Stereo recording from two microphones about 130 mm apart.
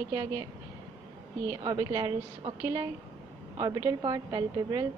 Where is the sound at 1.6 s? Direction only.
30° right (ahead or behind).